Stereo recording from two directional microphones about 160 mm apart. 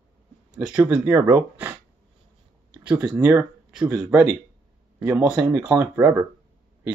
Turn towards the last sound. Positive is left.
turn(degrees=-15)  # may be behind; listen again after turning